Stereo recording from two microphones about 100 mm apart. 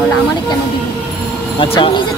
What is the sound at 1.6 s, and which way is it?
Speech, 60° left (ahead or behind).